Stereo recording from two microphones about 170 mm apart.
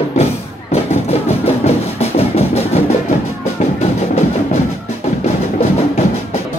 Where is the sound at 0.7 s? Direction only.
35° left (ahead or behind).